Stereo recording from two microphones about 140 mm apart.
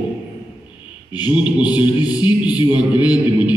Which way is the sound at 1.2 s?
10° right (ahead or behind).